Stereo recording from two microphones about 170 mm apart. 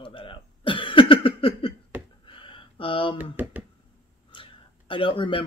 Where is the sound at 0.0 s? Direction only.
30° left (ahead or behind).